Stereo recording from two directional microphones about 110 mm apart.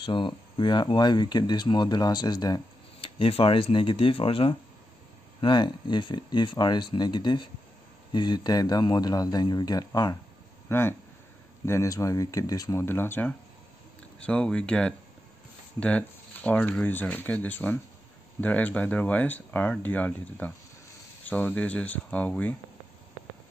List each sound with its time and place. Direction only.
0.0 s speech: 50° left (ahead or behind)
3.0 s speech: 60° left (ahead or behind)
5.4 s speech: 45° left (ahead or behind)
10.7 s speech: 20° left (ahead or behind)
14.2 s speech: 10° left (ahead or behind)